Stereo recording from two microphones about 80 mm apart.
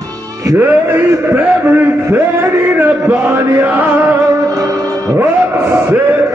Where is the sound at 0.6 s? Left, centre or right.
Right.